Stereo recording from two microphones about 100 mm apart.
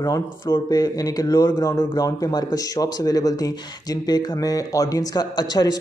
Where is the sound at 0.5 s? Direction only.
40° left (ahead or behind).